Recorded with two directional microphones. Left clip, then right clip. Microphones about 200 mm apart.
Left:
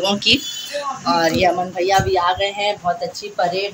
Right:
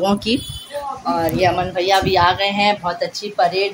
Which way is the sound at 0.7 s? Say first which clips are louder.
Left 2 dB; 15° right (ahead or behind).